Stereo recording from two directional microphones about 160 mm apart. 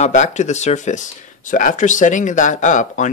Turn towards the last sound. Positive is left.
turn(degrees=50)  # may be behind; listen again after turning